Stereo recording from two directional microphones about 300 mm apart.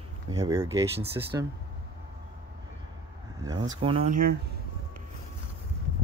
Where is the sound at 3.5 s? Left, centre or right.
Centre.